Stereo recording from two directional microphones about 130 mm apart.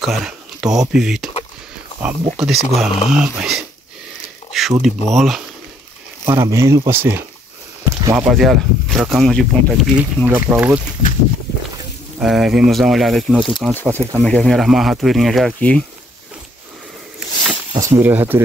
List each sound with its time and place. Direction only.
0.0 s a sound: 5° right (ahead or behind)
0.9 s speech: 5° right (ahead or behind)
2.3 s speech: centre (ahead or behind)
4.5 s a sound: centre (ahead or behind)
4.8 s speech: centre (ahead or behind)
6.2 s speech: 20° right (ahead or behind)
8.3 s speech: centre (ahead or behind)
9.9 s speech: 15° right (ahead or behind)
12.2 s speech: 5° right (ahead or behind)
13.8 s speech: 20° right (ahead or behind)
14.2 s speech: 5° left (ahead or behind)
17.2 s a sound: centre (ahead or behind)
17.7 s speech: 25° right (ahead or behind)